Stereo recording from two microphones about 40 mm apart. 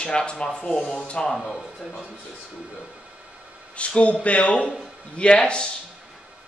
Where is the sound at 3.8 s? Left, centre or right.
Left.